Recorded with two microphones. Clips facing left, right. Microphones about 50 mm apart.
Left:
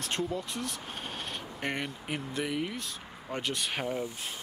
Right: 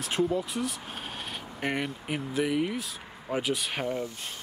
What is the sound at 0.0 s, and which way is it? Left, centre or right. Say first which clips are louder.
Speech: right 5 dB; centre.